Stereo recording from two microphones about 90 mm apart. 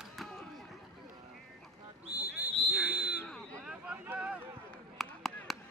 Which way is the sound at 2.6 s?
20° left (ahead or behind).